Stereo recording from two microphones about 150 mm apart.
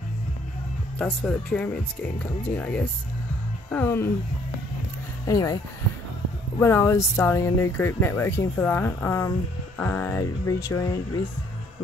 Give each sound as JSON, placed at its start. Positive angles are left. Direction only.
{"t": 0.9, "sound": "speech", "side_deg": 5}
{"t": 5.2, "sound": "speech", "side_deg": 25}
{"t": 6.6, "sound": "speech", "side_deg": 20}